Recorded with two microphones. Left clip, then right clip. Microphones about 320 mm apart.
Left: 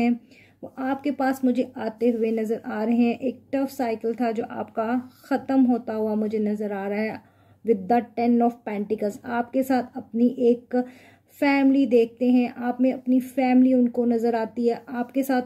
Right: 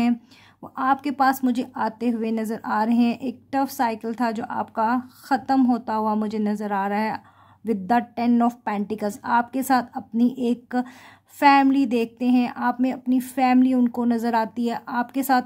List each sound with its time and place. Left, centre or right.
0.7 s speech: right